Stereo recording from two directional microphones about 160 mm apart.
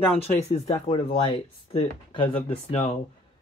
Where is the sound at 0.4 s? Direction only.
40° left (ahead or behind).